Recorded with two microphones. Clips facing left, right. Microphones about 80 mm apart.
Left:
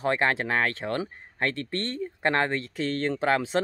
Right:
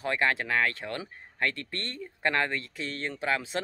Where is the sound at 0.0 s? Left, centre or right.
Left.